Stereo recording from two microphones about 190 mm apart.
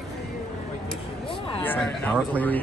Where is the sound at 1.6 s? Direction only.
10° left (ahead or behind).